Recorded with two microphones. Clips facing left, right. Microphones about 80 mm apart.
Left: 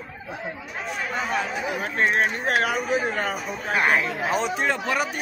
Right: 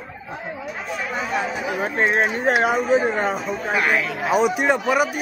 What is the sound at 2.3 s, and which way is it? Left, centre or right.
Speech, right.